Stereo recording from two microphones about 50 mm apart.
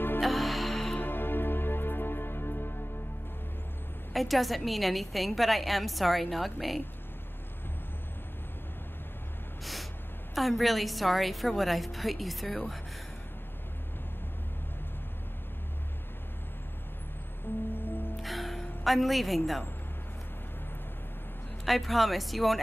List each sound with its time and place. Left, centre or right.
0.2 s music: centre
1.0 s music: left
4.1 s a woman's voice: centre
10.3 s a woman's voice: centre
17.7 s music: left
18.2 s music: centre
21.6 s a woman's voice: centre